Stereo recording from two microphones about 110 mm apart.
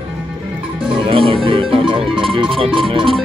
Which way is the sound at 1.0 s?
55° right (ahead or behind).